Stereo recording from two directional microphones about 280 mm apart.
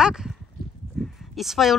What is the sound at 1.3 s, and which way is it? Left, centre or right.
Speech, centre.